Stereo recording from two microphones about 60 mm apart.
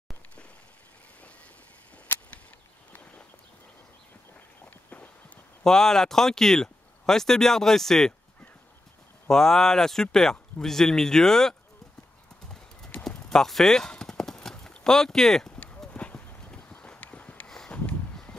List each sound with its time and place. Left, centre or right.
2.0 s a sound: left
4.8 s walk: left
5.6 s speech: centre
9.3 s speech: centre
12.9 s clip-clop: left
13.3 s clip-clop: centre
15.5 s clip-clop: left
15.9 s horse: left
17.6 s a sound: left